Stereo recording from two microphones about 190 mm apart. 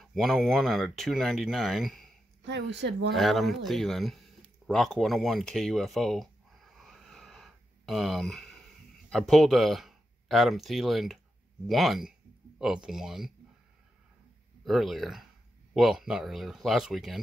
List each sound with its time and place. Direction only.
0.0 s speech: centre (ahead or behind)
2.4 s a woman's voice: 65° right (ahead or behind)
3.2 s speech: centre (ahead or behind)
4.6 s a sound: centre (ahead or behind)
9.1 s speech: centre (ahead or behind)
14.6 s speech: centre (ahead or behind)